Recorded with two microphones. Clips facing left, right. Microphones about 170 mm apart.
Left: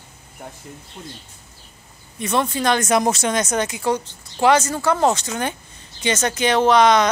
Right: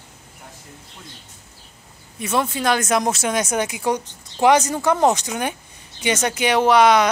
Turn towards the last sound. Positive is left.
turn(degrees=-10)  # may be behind; listen again after turning